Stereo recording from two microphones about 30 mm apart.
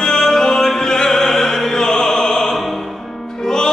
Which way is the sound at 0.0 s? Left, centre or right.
Centre.